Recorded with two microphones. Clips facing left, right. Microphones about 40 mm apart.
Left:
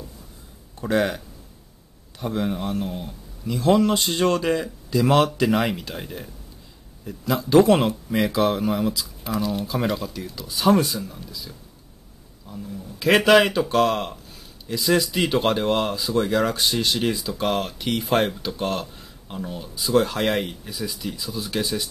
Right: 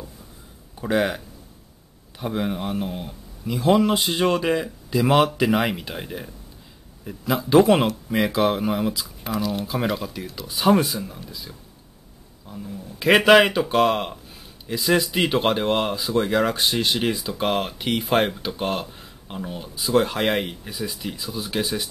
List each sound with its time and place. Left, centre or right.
0.7 s speech: centre